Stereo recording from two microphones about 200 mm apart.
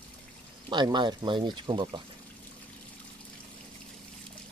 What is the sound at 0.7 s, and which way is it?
Speech, 20° right (ahead or behind).